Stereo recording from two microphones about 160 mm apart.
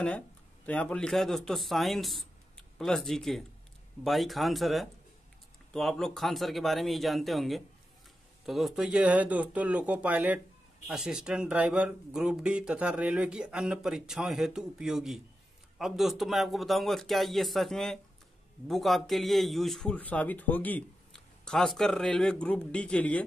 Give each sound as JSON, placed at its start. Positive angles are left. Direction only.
{"t": 0.7, "sound": "speech", "side_deg": 10}